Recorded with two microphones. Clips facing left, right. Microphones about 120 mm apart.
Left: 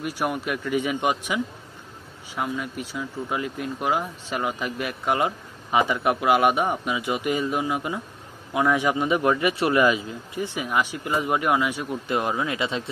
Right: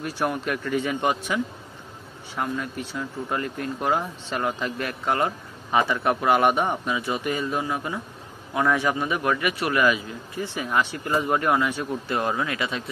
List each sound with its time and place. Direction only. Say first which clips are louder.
0.0 s a man's voice: even; 10° left (ahead or behind)